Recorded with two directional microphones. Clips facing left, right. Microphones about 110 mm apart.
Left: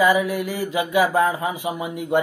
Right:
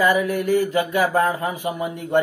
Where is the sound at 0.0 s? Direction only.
10° left (ahead or behind).